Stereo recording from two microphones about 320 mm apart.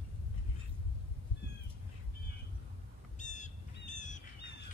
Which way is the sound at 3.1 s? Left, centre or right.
Left.